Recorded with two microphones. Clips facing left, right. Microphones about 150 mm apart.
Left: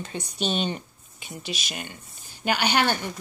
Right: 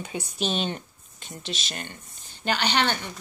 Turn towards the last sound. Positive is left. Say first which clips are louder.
# left 2 dB
turn(degrees=10)  # may be behind; listen again after turning